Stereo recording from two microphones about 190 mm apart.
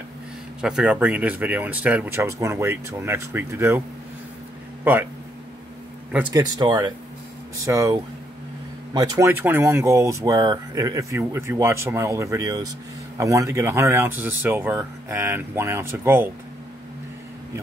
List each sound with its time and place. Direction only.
0.6 s speech: 5° right (ahead or behind)
6.2 s speech: 20° right (ahead or behind)